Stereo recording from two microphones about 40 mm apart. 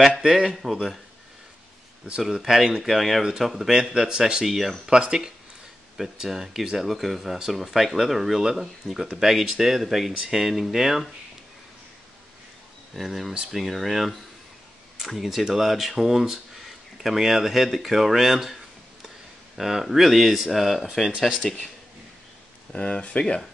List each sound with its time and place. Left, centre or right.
0.2 s speech: centre
0.5 s speech: centre
2.2 s speech: centre
4.5 s speech: centre
5.0 s speech: centre
13.0 s speech: centre
21.3 s speech: centre
22.7 s speech: left